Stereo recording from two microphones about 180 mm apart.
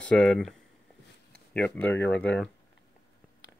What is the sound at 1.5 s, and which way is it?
Speech, 10° left (ahead or behind).